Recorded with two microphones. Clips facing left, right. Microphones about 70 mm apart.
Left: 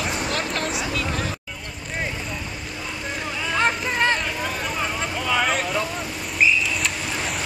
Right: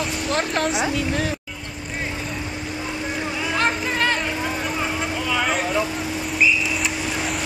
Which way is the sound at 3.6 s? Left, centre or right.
Centre.